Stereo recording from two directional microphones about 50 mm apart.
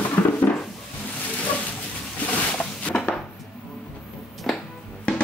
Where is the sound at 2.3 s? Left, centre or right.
Left.